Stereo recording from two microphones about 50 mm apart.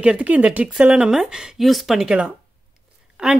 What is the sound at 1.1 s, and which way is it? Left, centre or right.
Speech, centre.